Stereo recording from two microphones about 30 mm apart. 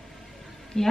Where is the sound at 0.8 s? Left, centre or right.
Centre.